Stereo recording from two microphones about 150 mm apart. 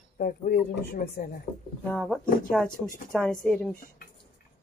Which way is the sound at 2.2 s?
65° left (ahead or behind).